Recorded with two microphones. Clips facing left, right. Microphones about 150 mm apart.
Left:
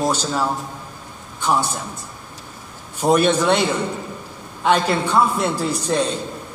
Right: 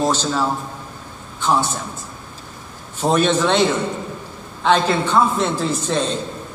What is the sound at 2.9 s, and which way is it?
Speech, 10° left (ahead or behind).